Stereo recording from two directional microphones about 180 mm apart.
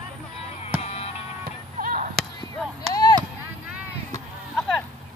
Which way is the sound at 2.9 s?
20° left (ahead or behind).